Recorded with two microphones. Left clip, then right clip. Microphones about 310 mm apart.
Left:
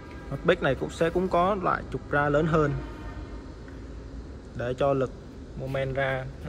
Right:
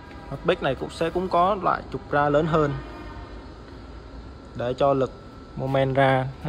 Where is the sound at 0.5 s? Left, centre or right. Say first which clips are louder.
Even; centre.